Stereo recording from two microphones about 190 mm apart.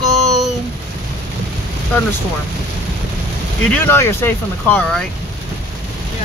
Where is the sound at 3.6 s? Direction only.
10° left (ahead or behind).